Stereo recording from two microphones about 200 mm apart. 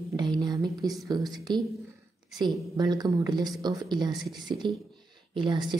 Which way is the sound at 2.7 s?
20° right (ahead or behind).